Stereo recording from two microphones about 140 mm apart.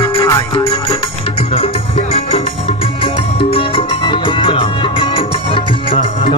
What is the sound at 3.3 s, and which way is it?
Music, 40° left (ahead or behind).